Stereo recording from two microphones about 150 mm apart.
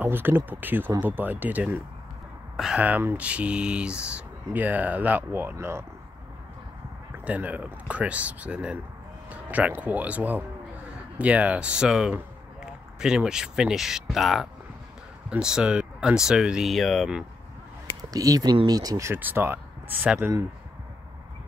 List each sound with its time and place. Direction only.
0.0 s speech: 15° right (ahead or behind)
7.2 s speech: 10° right (ahead or behind)
18.1 s speech: 25° right (ahead or behind)